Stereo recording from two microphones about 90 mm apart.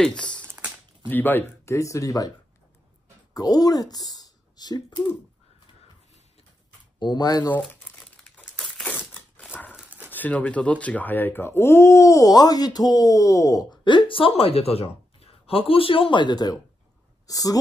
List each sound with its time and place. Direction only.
0.0 s typing: 10° left (ahead or behind)
1.0 s speech: 20° left (ahead or behind)
1.7 s speech: 35° left (ahead or behind)
3.3 s speech: 40° left (ahead or behind)
7.0 s speech: 50° left (ahead or behind)
7.6 s crumpling: 10° left (ahead or behind)
9.8 s dog: 15° right (ahead or behind)
10.1 s speech: 15° left (ahead or behind); by 13.7 s 35° left (ahead or behind)
13.7 s speech: 60° left (ahead or behind); by 17.6 s 40° left (ahead or behind)